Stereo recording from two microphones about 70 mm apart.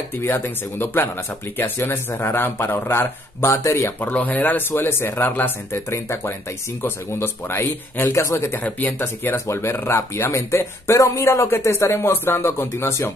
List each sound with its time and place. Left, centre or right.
0.2 s speech: left
4.0 s speech: left
8.6 s speech: left
9.0 s speech: left